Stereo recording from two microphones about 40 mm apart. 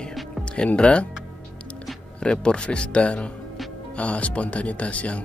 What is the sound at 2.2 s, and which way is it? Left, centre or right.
Speech, left.